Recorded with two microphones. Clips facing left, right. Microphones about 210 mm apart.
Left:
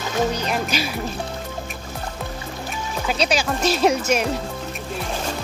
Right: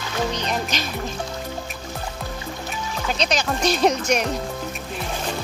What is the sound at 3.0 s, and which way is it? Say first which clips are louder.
Speech: left 2 dB; 5° left (ahead or behind).